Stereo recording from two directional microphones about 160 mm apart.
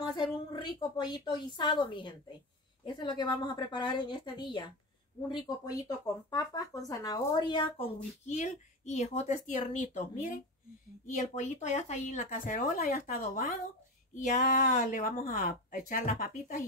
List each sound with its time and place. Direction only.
0.0 s a woman's voice: 25° left (ahead or behind); by 16.6 s 55° left (ahead or behind)